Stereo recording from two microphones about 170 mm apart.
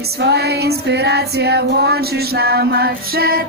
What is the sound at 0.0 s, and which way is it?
Female singing, 70° right (ahead or behind).